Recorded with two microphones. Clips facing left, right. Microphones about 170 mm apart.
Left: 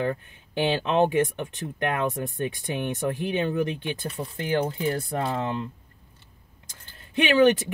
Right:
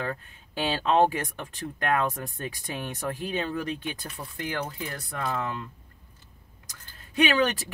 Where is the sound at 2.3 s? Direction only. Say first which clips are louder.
Left 6 dB; 20° left (ahead or behind).